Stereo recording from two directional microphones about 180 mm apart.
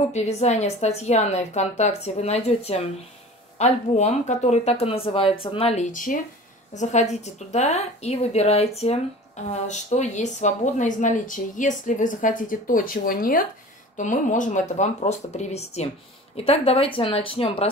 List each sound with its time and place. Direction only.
0.1 s speech: 35° left (ahead or behind)